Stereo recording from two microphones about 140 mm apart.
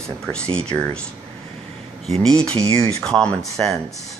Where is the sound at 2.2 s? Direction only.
5° left (ahead or behind).